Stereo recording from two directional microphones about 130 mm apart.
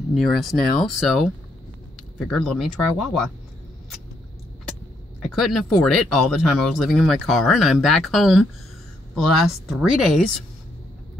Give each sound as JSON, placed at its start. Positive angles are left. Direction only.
{"t": 0.1, "sound": "speech", "side_deg": 0}
{"t": 2.3, "sound": "speech", "side_deg": 0}
{"t": 5.2, "sound": "speech", "side_deg": 0}